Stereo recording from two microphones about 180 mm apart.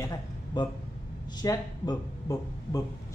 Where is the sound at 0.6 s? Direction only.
25° left (ahead or behind).